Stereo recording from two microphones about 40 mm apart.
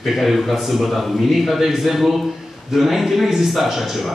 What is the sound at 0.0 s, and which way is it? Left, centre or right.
Speech, centre.